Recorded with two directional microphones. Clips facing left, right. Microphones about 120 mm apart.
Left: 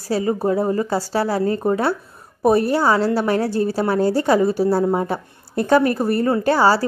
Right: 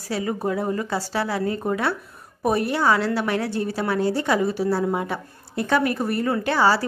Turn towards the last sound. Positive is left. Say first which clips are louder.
# left 4 dB
turn(degrees=40)  # may be behind; listen again after turning